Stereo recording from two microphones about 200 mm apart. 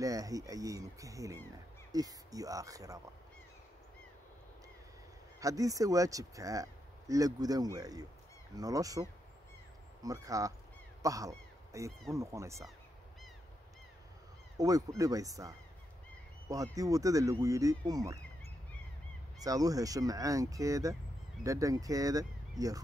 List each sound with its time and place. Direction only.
0.0 s speech: 15° right (ahead or behind)
5.4 s speech: 15° right (ahead or behind)
10.0 s speech: 15° right (ahead or behind)
11.0 s a sound: 15° right (ahead or behind)
12.1 s speech: 15° right (ahead or behind)
14.6 s speech: 15° right (ahead or behind)
19.4 s speech: 15° right (ahead or behind)